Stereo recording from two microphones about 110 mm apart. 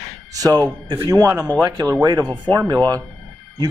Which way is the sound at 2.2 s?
15° left (ahead or behind).